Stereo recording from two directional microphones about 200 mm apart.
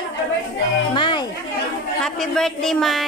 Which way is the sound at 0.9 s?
25° left (ahead or behind).